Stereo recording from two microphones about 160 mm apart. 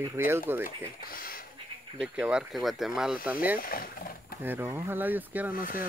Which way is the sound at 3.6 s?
65° left (ahead or behind).